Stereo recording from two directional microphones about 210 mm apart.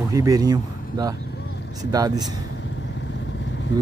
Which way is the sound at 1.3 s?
55° left (ahead or behind).